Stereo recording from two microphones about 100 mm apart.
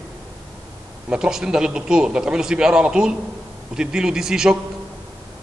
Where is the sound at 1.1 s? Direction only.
10° right (ahead or behind).